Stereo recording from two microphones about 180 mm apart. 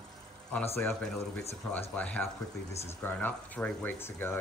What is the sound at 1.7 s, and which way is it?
Speech, 10° left (ahead or behind).